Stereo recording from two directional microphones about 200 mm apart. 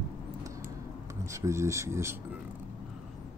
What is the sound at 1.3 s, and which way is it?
Speech, 15° right (ahead or behind).